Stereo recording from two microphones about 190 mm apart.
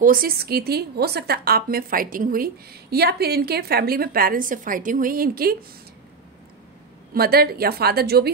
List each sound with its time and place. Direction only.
0.0 s a woman's voice: 50° right (ahead or behind)
7.2 s a woman's voice: 55° right (ahead or behind)